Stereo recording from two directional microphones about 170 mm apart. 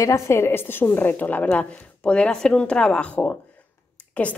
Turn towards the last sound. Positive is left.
turn(degrees=10)  # may be behind; listen again after turning